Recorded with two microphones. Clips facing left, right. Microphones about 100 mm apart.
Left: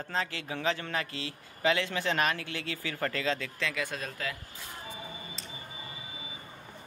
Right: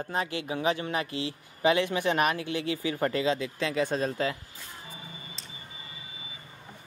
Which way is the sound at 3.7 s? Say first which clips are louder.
Right 8 dB; 30° right (ahead or behind).